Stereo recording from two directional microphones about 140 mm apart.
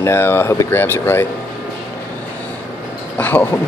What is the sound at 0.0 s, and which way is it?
Speech, 15° left (ahead or behind).